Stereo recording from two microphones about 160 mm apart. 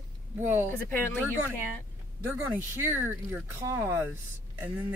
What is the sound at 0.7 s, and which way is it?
Speech, 15° left (ahead or behind).